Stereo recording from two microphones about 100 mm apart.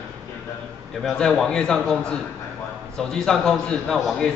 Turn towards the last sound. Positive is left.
turn(degrees=5)  # may be behind; listen again after turning